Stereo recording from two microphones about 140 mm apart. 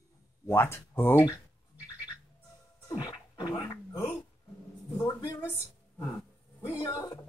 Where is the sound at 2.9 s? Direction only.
30° left (ahead or behind).